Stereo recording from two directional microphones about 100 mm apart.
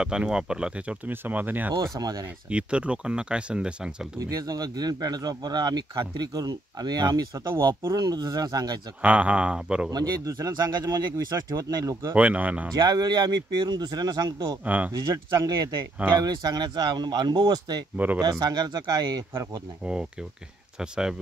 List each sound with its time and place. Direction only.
0.0 s speech: 10° right (ahead or behind)
1.8 s speech: 40° right (ahead or behind)
2.5 s speech: 10° right (ahead or behind)
4.2 s speech: 35° right (ahead or behind)
9.0 s speech: 15° right (ahead or behind)
9.8 s speech: 40° right (ahead or behind)
12.2 s speech: 15° right (ahead or behind)
12.7 s speech: 45° right (ahead or behind)
14.6 s speech: 15° right (ahead or behind)
14.9 s speech: 40° right (ahead or behind)
17.9 s speech: 15° right (ahead or behind)
18.2 s speech: 40° right (ahead or behind)
19.8 s speech: 10° right (ahead or behind)